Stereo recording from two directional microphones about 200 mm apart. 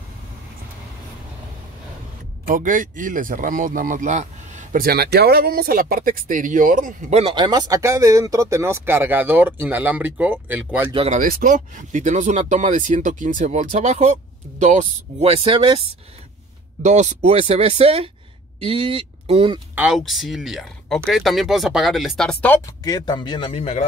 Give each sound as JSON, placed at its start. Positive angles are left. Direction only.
{"t": 2.4, "sound": "speech", "side_deg": -40}
{"t": 11.1, "sound": "speech", "side_deg": -45}
{"t": 16.8, "sound": "speech", "side_deg": -35}
{"t": 19.7, "sound": "speech", "side_deg": -5}
{"t": 22.8, "sound": "a man's voice", "side_deg": 20}